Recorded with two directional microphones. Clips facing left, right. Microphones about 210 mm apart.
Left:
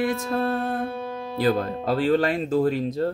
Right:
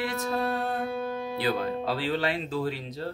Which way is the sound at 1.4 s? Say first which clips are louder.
Left 6 dB; 45° left (ahead or behind).